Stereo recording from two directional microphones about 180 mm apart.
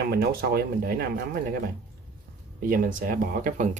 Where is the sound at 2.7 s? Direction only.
50° right (ahead or behind).